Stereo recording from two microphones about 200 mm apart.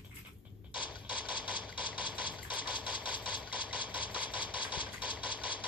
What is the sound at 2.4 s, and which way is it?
Engine, 25° left (ahead or behind).